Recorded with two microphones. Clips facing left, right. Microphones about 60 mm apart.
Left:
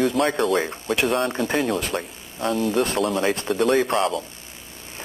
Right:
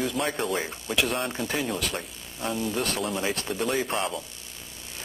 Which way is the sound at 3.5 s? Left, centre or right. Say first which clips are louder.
Left 9 dB; left.